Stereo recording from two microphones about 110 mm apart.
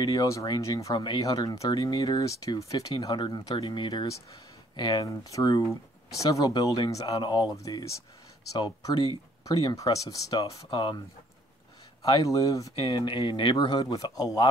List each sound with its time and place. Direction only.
0.0 s speech: 35° left (ahead or behind)
0.9 s speech: 45° left (ahead or behind)
12.0 s speech: 30° left (ahead or behind)
12.7 s speech: 45° left (ahead or behind)